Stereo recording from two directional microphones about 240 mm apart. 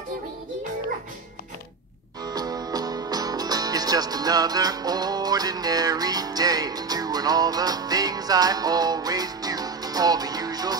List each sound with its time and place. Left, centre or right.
2.2 s music: centre